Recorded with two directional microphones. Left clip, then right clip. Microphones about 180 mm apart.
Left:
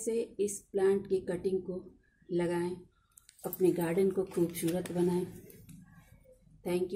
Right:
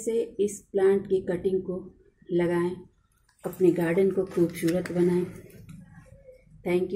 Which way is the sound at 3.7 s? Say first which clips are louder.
Right 7 dB; 5° left (ahead or behind).